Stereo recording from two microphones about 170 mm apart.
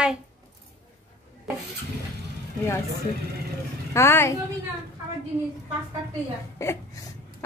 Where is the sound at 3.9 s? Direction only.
15° left (ahead or behind).